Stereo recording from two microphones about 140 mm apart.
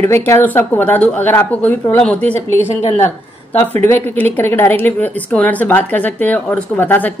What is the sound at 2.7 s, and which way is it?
Speech, 50° left (ahead or behind).